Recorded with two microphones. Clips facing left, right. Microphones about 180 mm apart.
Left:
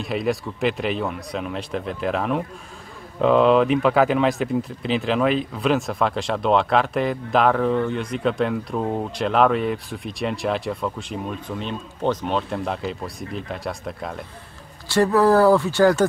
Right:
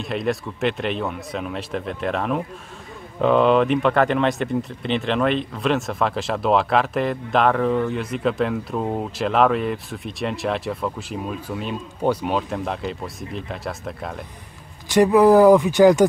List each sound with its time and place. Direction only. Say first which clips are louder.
0.0 s speech: even; centre (ahead or behind)
14.9 s speech: right 3 dB; 15° right (ahead or behind)